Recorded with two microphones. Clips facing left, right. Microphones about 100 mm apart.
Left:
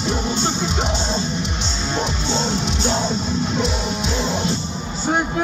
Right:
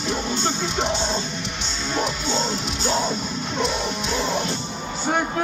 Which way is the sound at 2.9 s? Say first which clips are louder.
Left 1 dB; 20° left (ahead or behind).